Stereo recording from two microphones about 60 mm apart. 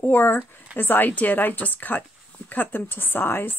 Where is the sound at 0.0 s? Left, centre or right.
Left.